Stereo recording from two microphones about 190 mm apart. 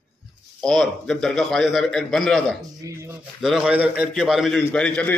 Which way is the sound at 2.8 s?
15° right (ahead or behind).